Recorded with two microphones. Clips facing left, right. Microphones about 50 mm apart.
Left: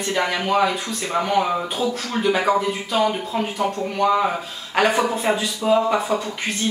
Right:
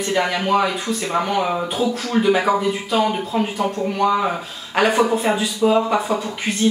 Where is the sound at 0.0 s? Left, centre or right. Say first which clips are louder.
Right 2 dB; centre.